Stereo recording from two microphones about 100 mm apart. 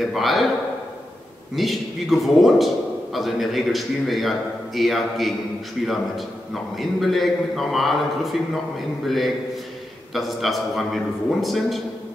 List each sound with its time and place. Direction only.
0.0 s a man's voice: centre (ahead or behind)
1.5 s a man's voice: centre (ahead or behind)